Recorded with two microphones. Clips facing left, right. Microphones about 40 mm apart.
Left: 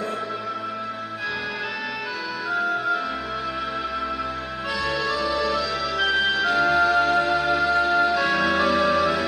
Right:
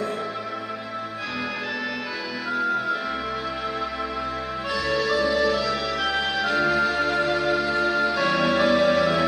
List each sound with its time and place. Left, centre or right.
4.8 s music: centre
5.9 s music: centre